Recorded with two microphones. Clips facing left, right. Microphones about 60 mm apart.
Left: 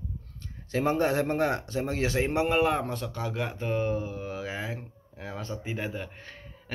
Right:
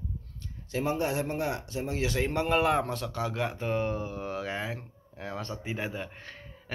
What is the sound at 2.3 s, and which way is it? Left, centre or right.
Speech, centre.